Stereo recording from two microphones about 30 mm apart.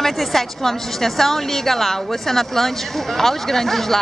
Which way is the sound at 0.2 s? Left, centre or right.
Centre.